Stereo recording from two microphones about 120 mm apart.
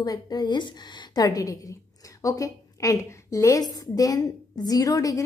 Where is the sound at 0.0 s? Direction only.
35° left (ahead or behind).